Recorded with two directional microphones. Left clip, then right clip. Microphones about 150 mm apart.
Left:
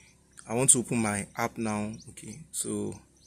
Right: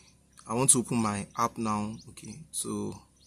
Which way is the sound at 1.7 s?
15° right (ahead or behind).